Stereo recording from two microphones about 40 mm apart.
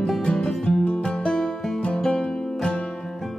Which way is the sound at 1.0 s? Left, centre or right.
Centre.